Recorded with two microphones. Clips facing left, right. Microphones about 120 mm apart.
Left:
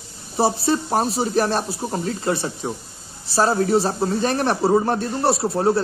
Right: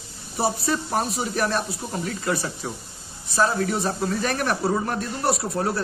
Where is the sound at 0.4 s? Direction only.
30° left (ahead or behind).